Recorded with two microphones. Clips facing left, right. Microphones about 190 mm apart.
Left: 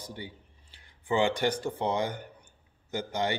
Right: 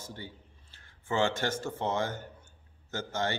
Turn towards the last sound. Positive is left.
turn(degrees=15)  # may be behind; listen again after turning